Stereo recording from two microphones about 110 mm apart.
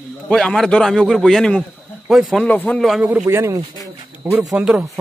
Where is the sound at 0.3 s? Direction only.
5° left (ahead or behind).